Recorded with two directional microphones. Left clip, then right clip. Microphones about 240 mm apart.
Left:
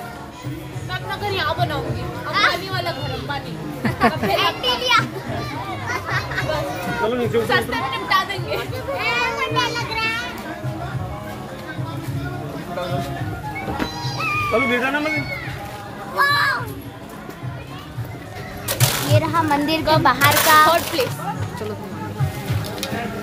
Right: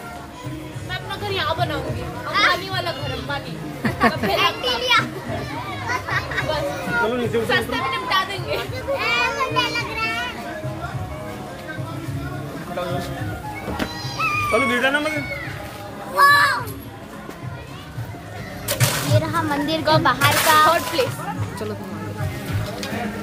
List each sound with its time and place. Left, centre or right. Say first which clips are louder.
1.3 s a child's voice: even; centre
7.0 s chatter: left 1 dB; centre
14.2 s speech: even; right
16.2 s a sound: right 4 dB; right
18.7 s a sound: left 1 dB; left
20.0 s speech: left 2 dB; left